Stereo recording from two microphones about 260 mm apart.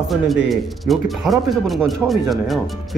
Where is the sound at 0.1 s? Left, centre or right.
Centre.